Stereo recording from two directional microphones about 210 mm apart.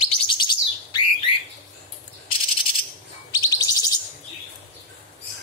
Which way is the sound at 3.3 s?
15° left (ahead or behind).